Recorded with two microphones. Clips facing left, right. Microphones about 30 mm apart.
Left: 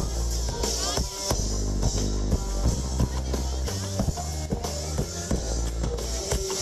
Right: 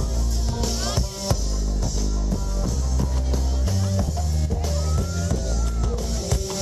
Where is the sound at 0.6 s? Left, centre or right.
Centre.